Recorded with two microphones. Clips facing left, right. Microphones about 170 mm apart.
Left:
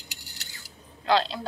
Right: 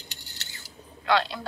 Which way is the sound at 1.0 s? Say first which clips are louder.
Left 1 dB; 30° left (ahead or behind).